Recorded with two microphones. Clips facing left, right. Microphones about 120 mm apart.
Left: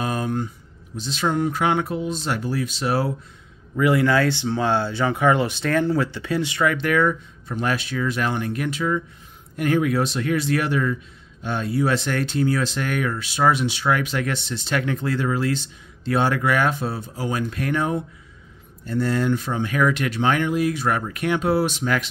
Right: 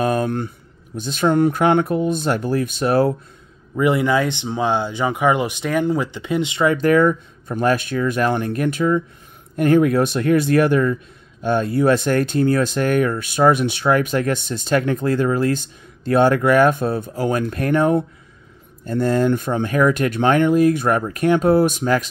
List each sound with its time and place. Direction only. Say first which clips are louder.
0.0 s a sound: right 5 dB; 55° right (ahead or behind)
0.9 s speech: right 6 dB; 50° right (ahead or behind)
3.7 s speech: right 1 dB; 20° right (ahead or behind)
6.8 s speech: right 5 dB; 40° right (ahead or behind)